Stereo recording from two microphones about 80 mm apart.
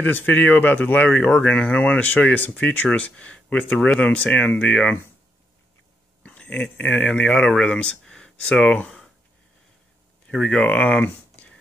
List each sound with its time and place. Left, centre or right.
0.0 s speech: left
6.2 s speech: centre
10.2 s speech: centre